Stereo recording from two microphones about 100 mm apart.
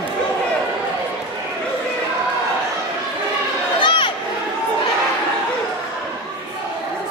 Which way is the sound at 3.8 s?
55° left (ahead or behind).